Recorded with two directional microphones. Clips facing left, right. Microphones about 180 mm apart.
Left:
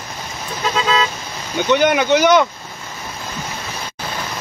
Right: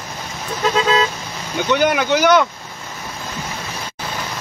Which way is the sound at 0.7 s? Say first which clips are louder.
Right 1 dB; 35° right (ahead or behind).